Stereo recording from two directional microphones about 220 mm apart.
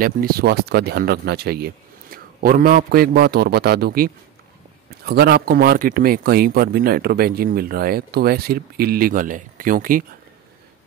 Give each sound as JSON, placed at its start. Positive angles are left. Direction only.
{"t": 0.0, "sound": "speech", "side_deg": -45}